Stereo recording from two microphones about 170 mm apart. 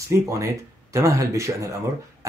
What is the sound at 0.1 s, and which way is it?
Speech, 20° right (ahead or behind).